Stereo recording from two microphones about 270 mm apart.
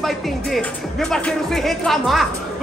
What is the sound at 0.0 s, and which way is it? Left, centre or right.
Speech, centre.